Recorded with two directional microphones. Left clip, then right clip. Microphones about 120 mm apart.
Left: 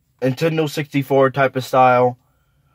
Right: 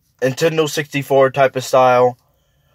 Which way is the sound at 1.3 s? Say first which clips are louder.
Right 3 dB; 20° left (ahead or behind).